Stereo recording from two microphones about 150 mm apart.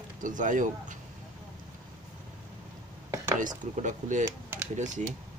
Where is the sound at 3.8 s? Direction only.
55° right (ahead or behind).